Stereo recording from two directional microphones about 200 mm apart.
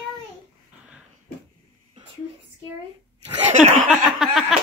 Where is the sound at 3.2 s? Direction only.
35° right (ahead or behind).